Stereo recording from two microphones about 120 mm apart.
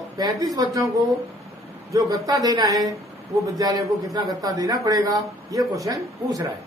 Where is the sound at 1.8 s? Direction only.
30° right (ahead or behind).